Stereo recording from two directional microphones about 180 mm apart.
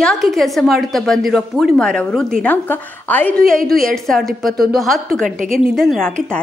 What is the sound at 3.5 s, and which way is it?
Speech, 55° right (ahead or behind).